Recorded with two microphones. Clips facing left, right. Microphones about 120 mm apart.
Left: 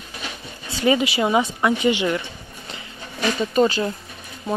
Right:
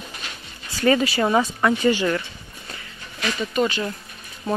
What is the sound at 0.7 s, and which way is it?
Speech, 15° left (ahead or behind).